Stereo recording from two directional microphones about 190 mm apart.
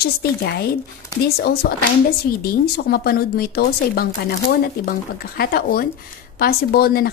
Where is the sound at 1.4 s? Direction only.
55° left (ahead or behind).